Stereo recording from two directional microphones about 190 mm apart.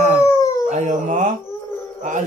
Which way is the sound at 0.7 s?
40° right (ahead or behind).